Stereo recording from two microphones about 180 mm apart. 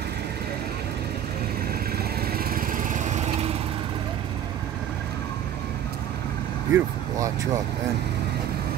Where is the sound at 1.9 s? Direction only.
55° right (ahead or behind); by 3.6 s 40° right (ahead or behind).